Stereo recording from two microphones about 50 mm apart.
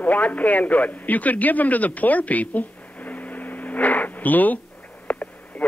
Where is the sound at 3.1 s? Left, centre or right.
Left.